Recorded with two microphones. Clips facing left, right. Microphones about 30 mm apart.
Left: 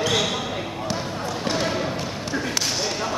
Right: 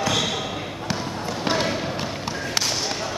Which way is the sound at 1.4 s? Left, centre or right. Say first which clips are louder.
Right 2 dB; centre.